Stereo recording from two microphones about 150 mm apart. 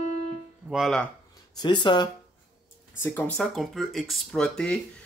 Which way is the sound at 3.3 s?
Centre (ahead or behind).